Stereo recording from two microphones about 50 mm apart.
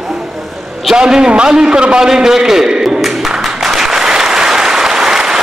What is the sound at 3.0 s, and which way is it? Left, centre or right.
Applause, centre.